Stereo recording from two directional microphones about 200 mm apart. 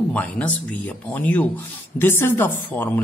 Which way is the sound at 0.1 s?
5° left (ahead or behind).